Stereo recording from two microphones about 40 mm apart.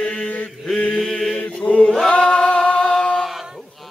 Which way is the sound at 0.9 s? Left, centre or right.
Centre.